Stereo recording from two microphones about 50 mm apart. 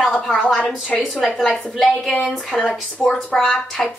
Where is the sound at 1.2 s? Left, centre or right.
Centre.